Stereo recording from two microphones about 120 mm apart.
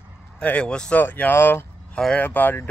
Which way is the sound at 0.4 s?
10° left (ahead or behind).